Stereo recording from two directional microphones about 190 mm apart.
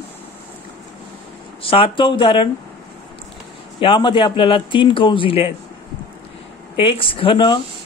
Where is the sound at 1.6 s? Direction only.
30° left (ahead or behind).